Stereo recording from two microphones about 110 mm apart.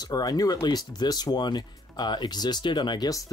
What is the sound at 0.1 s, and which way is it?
Speech, 35° left (ahead or behind).